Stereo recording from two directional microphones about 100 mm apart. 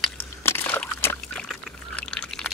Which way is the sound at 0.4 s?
25° left (ahead or behind).